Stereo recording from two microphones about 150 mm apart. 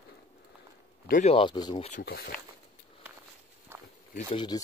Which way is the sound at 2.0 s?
90° left.